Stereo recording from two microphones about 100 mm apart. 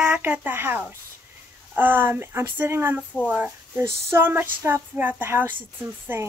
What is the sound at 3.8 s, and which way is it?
A woman's voice, 25° right (ahead or behind).